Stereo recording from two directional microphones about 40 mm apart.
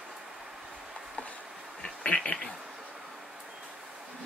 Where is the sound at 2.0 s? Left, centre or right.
Left.